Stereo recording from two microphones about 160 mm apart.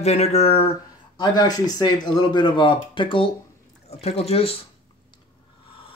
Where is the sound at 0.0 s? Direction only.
40° left (ahead or behind).